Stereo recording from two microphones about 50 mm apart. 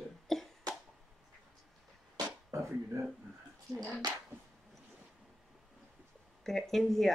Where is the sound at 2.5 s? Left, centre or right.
Right.